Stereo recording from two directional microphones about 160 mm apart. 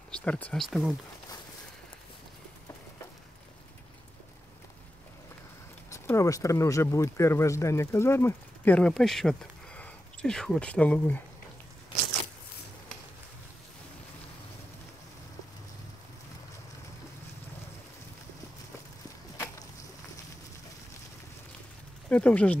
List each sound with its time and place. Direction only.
0.1 s speech: 10° left (ahead or behind)
5.9 s speech: 20° left (ahead or behind)
22.1 s speech: 5° left (ahead or behind)